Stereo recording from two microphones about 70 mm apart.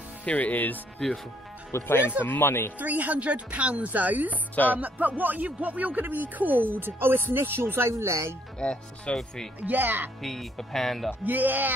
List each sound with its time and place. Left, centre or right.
0.2 s speech: left
0.9 s speech: centre
1.7 s speech: left
2.8 s speech: right
8.5 s speech: centre
9.6 s speech: right
10.2 s speech: centre
11.2 s speech: right